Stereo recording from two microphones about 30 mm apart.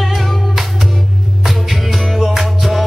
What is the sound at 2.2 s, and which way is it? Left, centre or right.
Music, centre.